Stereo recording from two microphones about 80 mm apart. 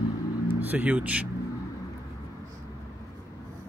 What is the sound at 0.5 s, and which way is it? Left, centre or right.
Speech, right.